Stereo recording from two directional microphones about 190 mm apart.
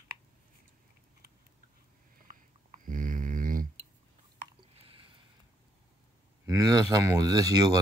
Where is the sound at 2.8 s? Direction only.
45° right (ahead or behind).